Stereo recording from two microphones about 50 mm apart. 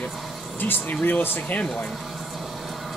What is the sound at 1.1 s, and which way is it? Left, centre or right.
Speech, left.